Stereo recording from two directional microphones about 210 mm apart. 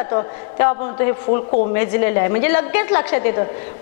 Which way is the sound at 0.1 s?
25° left (ahead or behind).